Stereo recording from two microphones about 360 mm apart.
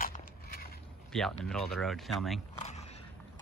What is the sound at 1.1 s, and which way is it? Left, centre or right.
Speech, centre.